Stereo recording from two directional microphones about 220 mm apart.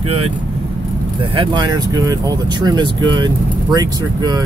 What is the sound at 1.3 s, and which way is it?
Speech, 20° right (ahead or behind).